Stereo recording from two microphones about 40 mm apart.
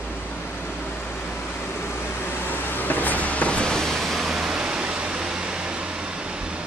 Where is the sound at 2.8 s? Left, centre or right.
Left.